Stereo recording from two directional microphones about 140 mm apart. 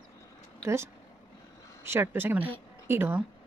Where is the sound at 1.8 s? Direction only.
15° right (ahead or behind).